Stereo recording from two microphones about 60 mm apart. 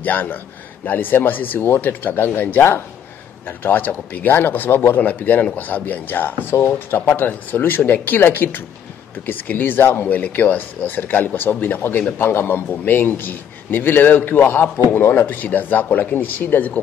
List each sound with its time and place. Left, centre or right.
0.0 s speech: left